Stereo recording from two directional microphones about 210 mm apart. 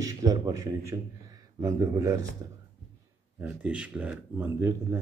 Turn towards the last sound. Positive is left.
turn(degrees=-10)  # may be behind; listen again after turning